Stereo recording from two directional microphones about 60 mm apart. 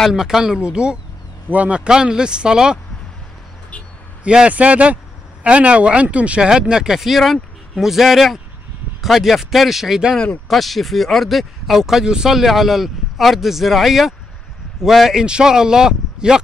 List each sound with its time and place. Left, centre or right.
0.1 s a man's voice: centre; by 1.8 s right
1.9 s speech: centre
4.2 s a man's voice: centre
10.1 s speech: centre
10.5 s speech: centre